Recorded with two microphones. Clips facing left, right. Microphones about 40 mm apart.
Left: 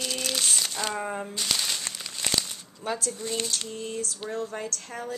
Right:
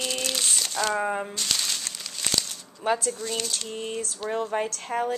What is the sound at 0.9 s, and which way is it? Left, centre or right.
Speech, centre.